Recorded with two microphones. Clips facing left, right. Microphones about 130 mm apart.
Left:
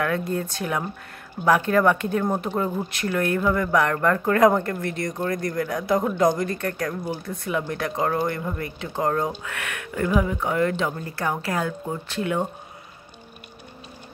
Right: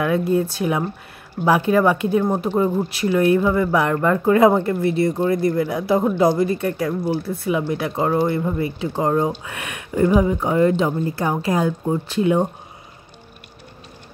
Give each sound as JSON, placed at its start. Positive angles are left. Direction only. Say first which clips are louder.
{"t": 0.0, "sound": "speech", "louder": "right 6 dB", "side_deg": -15}